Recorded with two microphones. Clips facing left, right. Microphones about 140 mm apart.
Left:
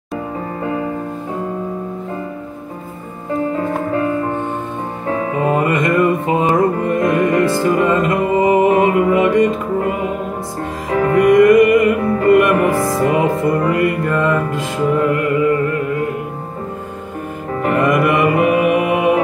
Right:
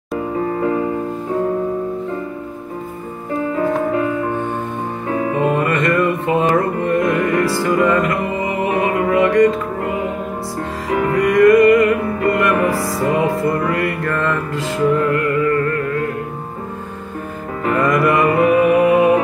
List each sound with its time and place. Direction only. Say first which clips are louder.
5.3 s music: left 1 dB; 15° left (ahead or behind)
10.9 s music: left 3 dB; 30° left (ahead or behind)
11.3 s music: right 1 dB; 20° left (ahead or behind)
17.6 s music: left 1 dB; 20° left (ahead or behind)